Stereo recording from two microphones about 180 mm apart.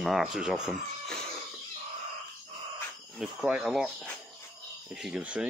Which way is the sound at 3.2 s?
5° right (ahead or behind).